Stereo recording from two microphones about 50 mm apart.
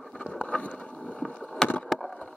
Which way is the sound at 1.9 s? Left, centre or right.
Centre.